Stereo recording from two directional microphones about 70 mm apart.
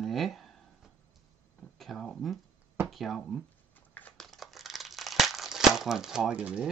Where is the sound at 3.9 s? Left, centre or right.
Left.